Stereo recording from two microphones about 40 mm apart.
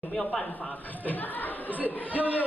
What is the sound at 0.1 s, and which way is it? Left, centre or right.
Speech, centre.